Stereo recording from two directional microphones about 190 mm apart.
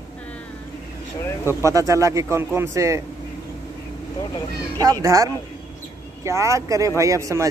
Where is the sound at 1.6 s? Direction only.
15° right (ahead or behind).